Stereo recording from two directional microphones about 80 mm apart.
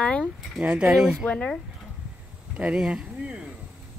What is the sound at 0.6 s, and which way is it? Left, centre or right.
Speech, centre.